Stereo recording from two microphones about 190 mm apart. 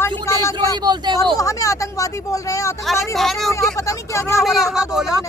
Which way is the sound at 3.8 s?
15° left (ahead or behind).